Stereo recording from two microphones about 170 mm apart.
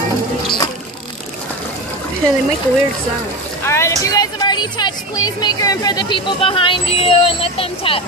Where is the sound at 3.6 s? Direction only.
15° left (ahead or behind); by 8.0 s 30° left (ahead or behind).